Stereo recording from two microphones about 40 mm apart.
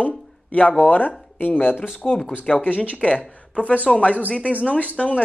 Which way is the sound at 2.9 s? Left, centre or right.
Left.